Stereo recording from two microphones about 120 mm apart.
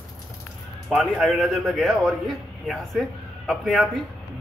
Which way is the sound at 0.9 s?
Centre (ahead or behind).